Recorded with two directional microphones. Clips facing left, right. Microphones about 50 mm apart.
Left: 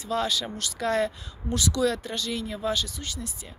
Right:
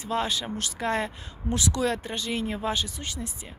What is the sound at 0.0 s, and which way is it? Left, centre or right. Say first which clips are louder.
Speech: left 1 dB; right.